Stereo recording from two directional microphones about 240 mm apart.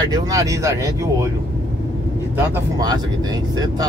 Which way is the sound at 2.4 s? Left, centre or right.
Centre.